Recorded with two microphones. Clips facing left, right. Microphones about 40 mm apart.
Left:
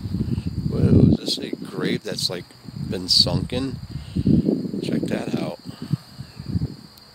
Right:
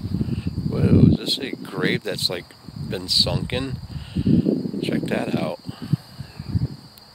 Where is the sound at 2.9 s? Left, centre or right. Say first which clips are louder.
Left 1 dB; right; by 5.9 s centre.